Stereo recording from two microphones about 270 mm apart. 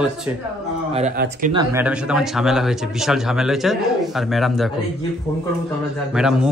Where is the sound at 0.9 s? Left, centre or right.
Right.